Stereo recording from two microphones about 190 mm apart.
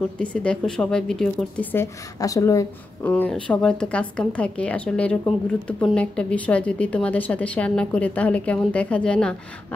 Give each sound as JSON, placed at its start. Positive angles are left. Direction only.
{"t": 0.2, "sound": "a woman's voice", "side_deg": 5}